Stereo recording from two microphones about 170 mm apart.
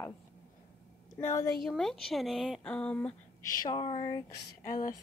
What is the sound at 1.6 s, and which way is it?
Speech, centre (ahead or behind).